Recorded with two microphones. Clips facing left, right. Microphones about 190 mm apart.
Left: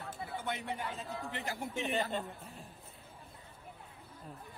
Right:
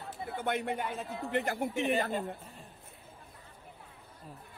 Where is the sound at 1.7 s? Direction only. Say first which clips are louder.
Right 2 dB; centre (ahead or behind).